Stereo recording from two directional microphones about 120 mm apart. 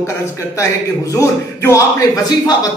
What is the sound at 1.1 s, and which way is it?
Speech, 25° left (ahead or behind).